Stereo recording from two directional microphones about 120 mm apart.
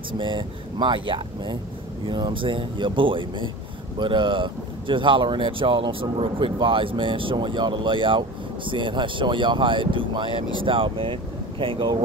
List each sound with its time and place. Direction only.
0.2 s speech: 40° right (ahead or behind)